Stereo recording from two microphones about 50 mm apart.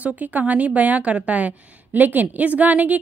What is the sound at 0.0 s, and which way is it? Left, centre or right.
A woman's voice, right.